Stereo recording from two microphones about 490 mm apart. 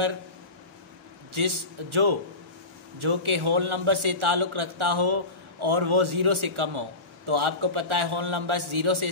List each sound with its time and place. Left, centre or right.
1.3 s a man's voice: right